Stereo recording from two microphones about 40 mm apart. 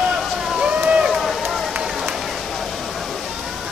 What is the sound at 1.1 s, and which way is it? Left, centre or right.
Run, centre.